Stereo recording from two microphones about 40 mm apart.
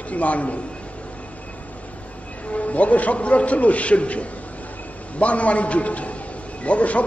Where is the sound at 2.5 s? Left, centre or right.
Left.